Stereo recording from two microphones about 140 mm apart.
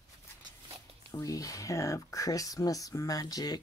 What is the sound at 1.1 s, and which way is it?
Speech, 25° left (ahead or behind).